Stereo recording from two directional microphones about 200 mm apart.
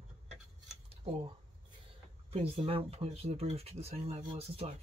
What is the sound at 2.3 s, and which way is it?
Speech, 30° right (ahead or behind).